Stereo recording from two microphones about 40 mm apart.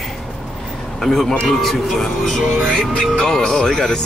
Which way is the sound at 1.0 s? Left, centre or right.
Centre.